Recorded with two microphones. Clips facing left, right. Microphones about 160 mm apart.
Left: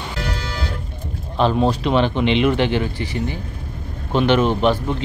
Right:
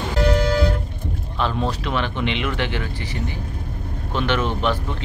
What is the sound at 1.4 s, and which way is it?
Speech, 25° left (ahead or behind).